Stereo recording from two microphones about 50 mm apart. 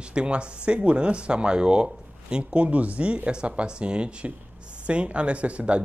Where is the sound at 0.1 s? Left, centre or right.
Right.